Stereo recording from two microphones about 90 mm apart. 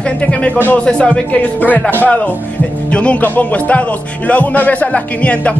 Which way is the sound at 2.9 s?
15° left (ahead or behind).